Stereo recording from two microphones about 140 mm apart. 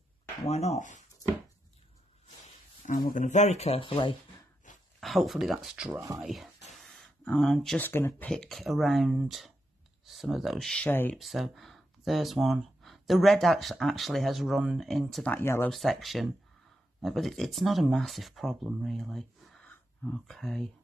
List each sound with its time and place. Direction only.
0.5 s speech: 50° left (ahead or behind)
2.8 s speech: 75° left (ahead or behind); by 4.2 s 35° left (ahead or behind)
5.0 s speech: centre (ahead or behind)
6.8 s a sound: centre (ahead or behind)
7.8 s speech: 15° left (ahead or behind)
8.3 s speech: 5° left (ahead or behind)
10.9 s speech: 15° left (ahead or behind)
11.1 s speech: centre (ahead or behind)
15.3 s speech: 15° left (ahead or behind)
15.7 s speech: centre (ahead or behind)